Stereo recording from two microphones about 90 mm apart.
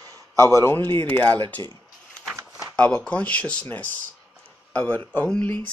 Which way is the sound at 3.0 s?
15° left (ahead or behind).